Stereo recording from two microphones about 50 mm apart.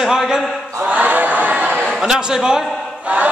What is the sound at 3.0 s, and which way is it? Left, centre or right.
Choir, right.